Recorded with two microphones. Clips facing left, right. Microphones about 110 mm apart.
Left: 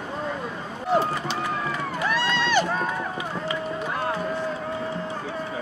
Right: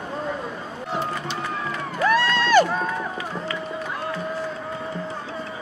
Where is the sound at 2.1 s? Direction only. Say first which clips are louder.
Right 6 dB; 45° right (ahead or behind).